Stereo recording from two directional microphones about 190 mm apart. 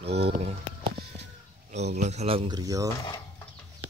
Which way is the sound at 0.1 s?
35° right (ahead or behind).